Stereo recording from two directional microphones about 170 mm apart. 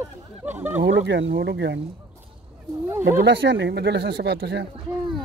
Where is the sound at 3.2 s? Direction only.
90° right.